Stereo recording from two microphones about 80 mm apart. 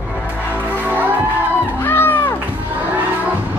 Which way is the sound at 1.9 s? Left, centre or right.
Left.